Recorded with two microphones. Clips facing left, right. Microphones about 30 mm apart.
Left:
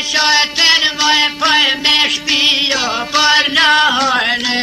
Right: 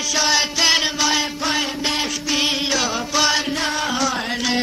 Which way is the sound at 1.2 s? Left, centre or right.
Left.